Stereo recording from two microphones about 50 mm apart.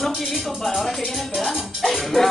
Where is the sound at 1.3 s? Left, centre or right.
Centre.